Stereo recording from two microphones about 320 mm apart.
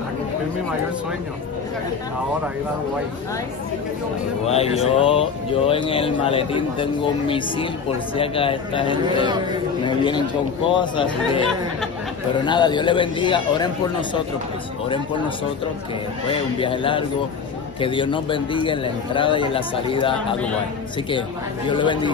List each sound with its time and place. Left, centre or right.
4.5 s a man's voice: centre
12.4 s a man's voice: centre
16.3 s a man's voice: centre
21.6 s a man's voice: centre